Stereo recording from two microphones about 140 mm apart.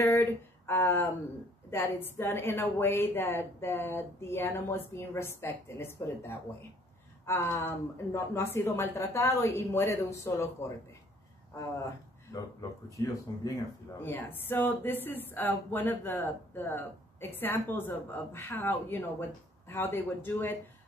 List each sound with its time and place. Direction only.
0.0 s a woman's voice: 15° left (ahead or behind)
12.3 s a woman's voice: 20° left (ahead or behind)